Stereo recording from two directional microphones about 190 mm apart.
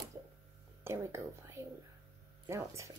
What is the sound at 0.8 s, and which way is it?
Speech, 15° right (ahead or behind).